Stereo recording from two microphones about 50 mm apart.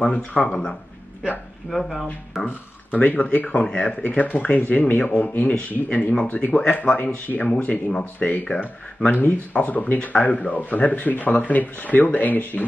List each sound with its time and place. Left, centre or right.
0.1 s speech: left
0.5 s speech: centre
1.7 s speech: centre
2.4 s speech: left; by 3.9 s centre
4.2 s speech: left